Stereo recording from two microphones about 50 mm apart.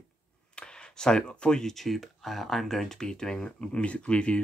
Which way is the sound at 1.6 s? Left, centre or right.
Centre.